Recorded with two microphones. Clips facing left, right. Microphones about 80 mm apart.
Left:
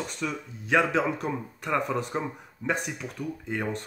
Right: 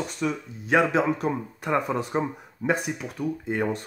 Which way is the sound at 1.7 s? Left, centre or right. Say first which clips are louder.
Right 3 dB; centre.